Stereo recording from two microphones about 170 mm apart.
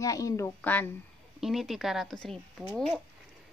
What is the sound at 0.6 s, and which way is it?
Speech, 10° left (ahead or behind).